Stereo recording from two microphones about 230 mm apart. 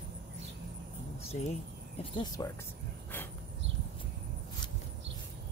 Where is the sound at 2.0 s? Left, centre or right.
Centre.